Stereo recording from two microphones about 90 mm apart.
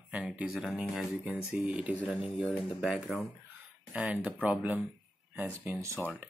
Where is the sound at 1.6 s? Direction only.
10° right (ahead or behind).